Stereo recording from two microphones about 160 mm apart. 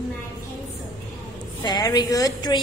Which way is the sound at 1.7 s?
25° left (ahead or behind).